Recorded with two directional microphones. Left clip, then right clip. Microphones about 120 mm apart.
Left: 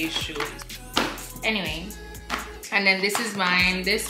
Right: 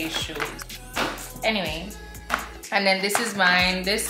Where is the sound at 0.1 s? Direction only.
15° right (ahead or behind).